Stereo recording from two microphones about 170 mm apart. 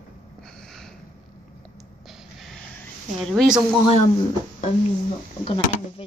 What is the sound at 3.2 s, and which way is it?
Speech, centre (ahead or behind).